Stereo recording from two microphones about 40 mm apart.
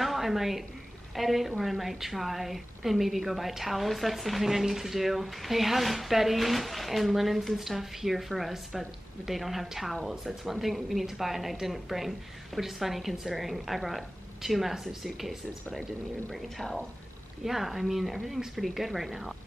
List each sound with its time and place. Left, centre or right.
0.0 s a woman's voice: centre
17.4 s a woman's voice: centre